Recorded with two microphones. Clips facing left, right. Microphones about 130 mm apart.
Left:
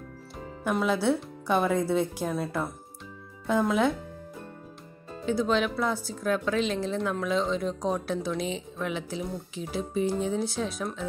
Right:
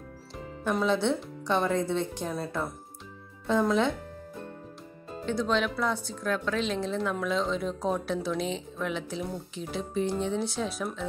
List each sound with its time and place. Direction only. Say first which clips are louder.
0.7 s speech: left 1 dB; 5° left (ahead or behind)
5.2 s speech: left 2 dB; 5° left (ahead or behind)